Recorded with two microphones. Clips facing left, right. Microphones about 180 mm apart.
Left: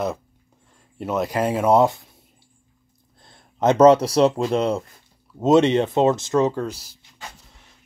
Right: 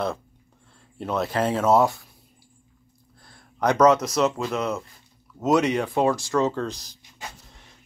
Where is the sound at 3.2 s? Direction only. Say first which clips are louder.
Left 3 dB; 20° left (ahead or behind).